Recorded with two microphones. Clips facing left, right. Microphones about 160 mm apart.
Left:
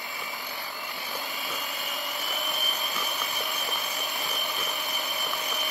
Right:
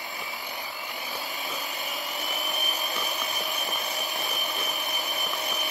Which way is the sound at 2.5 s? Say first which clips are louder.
Right 1 dB; 15° right (ahead or behind).